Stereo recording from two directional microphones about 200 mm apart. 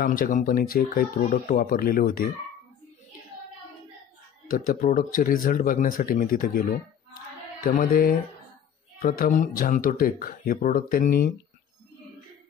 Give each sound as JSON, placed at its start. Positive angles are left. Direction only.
{"t": 0.0, "sound": "speech", "side_deg": 45}
{"t": 4.5, "sound": "speech", "side_deg": 40}